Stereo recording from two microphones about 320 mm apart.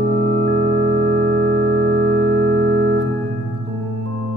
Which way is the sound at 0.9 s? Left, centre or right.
Right.